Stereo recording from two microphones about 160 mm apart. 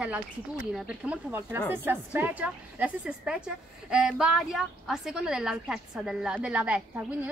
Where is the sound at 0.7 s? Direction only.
5° right (ahead or behind).